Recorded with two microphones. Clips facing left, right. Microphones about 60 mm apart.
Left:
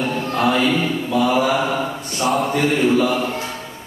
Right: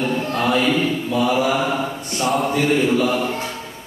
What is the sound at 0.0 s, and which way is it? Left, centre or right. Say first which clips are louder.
Mantra: right 1 dB; centre.